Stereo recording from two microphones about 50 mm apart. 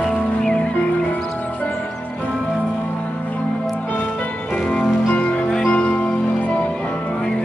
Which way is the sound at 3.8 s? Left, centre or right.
Left.